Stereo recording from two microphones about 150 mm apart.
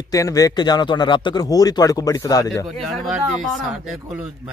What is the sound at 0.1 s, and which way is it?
Speech, 25° left (ahead or behind).